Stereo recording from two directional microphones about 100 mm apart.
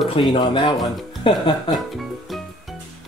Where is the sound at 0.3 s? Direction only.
45° left (ahead or behind).